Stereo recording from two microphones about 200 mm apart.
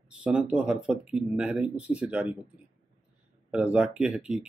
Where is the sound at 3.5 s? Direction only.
5° right (ahead or behind).